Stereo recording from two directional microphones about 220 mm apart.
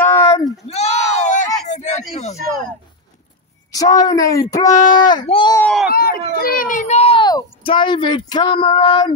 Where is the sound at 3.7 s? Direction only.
15° left (ahead or behind).